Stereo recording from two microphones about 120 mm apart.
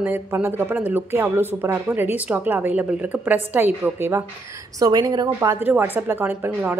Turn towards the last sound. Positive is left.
turn(degrees=-15)  # may be behind; listen again after turning